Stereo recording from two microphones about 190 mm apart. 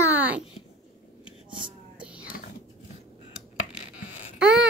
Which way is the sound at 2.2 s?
50° left (ahead or behind).